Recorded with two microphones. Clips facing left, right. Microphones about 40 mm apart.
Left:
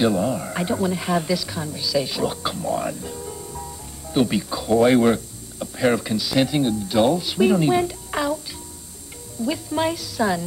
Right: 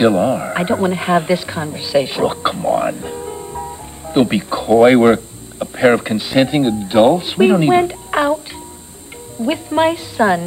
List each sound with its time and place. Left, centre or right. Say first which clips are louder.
0.0 s speech: right 7 dB; right
9.4 s a woman's voice: right 7 dB; right